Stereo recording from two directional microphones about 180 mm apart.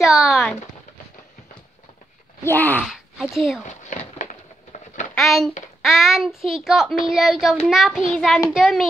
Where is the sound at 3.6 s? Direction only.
45° left (ahead or behind).